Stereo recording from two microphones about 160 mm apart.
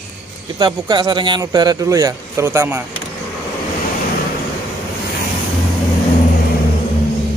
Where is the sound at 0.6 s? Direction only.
30° right (ahead or behind).